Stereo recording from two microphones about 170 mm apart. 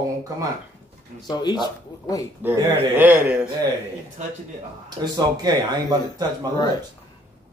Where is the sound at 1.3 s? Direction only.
25° left (ahead or behind).